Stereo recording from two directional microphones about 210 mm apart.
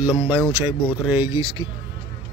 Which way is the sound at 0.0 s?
5° right (ahead or behind).